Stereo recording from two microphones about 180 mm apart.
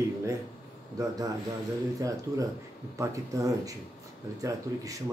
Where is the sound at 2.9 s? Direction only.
15° right (ahead or behind).